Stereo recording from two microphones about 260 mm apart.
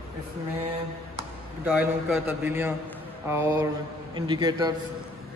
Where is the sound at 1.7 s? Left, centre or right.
Centre.